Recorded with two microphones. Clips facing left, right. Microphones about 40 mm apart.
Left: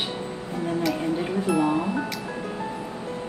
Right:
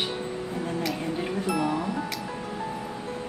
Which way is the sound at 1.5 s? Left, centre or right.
Left.